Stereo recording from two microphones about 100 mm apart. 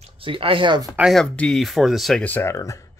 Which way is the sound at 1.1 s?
10° left (ahead or behind).